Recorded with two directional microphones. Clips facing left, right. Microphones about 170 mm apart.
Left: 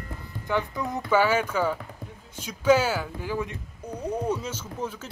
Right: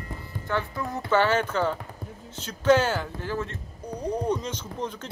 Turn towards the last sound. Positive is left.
turn(degrees=5)  # may be behind; listen again after turning